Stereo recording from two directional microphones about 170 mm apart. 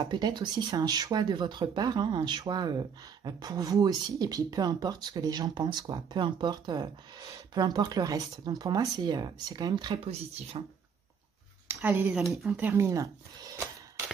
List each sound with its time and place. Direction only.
0.0 s speech: 25° right (ahead or behind)
11.6 s speech: 10° right (ahead or behind)
12.2 s speech: centre (ahead or behind)
12.5 s speech: 15° right (ahead or behind)